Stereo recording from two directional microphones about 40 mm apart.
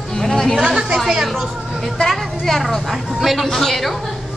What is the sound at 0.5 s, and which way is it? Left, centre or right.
Speech, centre.